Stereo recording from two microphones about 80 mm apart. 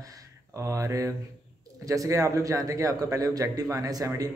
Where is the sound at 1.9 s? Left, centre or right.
Right.